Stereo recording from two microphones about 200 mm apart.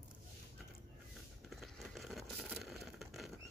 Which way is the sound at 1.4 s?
Centre (ahead or behind).